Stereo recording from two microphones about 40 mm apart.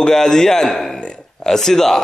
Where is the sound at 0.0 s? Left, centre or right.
Centre.